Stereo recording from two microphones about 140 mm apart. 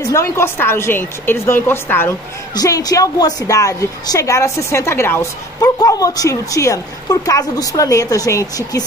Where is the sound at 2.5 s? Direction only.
25° left (ahead or behind).